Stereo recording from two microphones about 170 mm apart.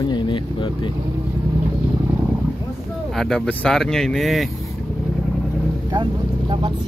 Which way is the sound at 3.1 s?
5° left (ahead or behind).